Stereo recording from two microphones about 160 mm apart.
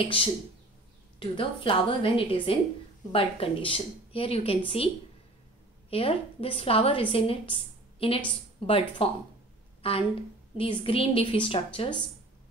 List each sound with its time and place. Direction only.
0.0 s a woman's voice: 35° left (ahead or behind)
9.8 s a sound: 35° left (ahead or behind)
10.6 s a woman's voice: 35° left (ahead or behind)